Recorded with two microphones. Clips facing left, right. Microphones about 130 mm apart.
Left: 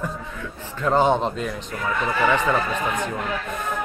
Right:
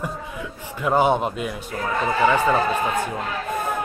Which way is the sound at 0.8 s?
10° right (ahead or behind).